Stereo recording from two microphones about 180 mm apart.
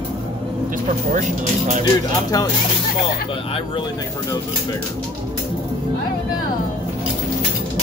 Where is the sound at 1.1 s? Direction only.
45° right (ahead or behind).